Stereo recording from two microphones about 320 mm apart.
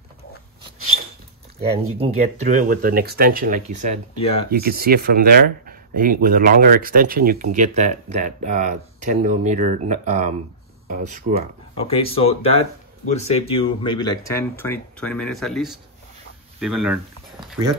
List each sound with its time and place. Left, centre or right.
2.0 s speech: right
4.1 s speech: centre
4.5 s speech: right
11.7 s speech: centre